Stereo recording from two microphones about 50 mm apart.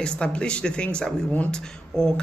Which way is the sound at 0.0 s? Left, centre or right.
Left.